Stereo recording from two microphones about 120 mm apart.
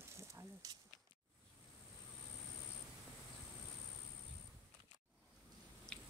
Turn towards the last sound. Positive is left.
turn(degrees=5)  # may be behind; listen again after turning